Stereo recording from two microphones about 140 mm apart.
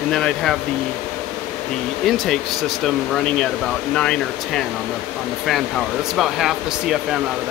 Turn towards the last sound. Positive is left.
turn(degrees=-5)  # may be behind; listen again after turning